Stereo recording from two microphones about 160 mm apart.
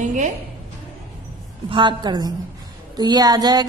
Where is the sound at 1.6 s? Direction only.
30° right (ahead or behind).